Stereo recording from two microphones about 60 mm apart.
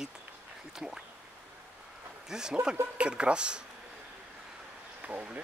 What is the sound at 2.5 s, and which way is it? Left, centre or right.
Speech, right.